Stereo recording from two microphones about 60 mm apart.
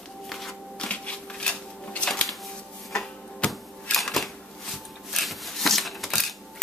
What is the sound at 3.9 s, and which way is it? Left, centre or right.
Shuffling cards, centre.